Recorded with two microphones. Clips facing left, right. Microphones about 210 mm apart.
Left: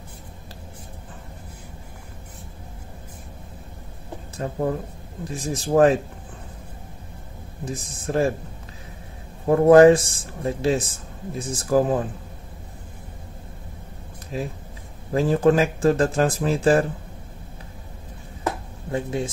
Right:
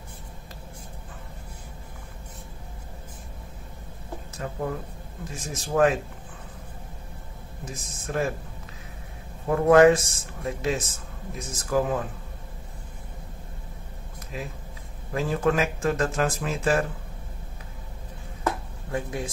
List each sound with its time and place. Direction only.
4.4 s speech: 35° left (ahead or behind)
7.6 s speech: 30° left (ahead or behind)
9.5 s speech: 30° left (ahead or behind)
14.3 s speech: 35° left (ahead or behind)
18.9 s speech: 25° left (ahead or behind)